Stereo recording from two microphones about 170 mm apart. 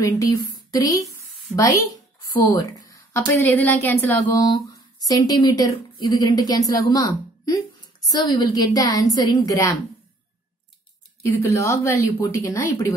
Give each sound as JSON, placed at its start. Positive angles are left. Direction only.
{"t": 0.2, "sound": "a woman's voice", "side_deg": 20}
{"t": 2.9, "sound": "a woman's voice", "side_deg": 15}
{"t": 4.6, "sound": "a woman's voice", "side_deg": 20}
{"t": 11.2, "sound": "a woman's voice", "side_deg": 15}